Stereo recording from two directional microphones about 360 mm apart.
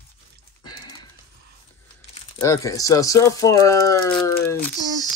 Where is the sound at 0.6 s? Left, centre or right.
Centre.